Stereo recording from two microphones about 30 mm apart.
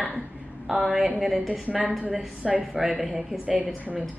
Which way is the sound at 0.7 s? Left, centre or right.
Centre.